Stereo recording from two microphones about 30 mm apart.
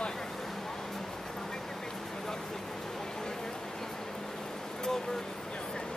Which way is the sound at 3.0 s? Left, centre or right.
Centre.